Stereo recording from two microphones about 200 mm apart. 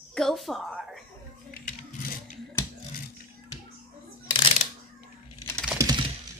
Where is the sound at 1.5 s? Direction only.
50° left (ahead or behind).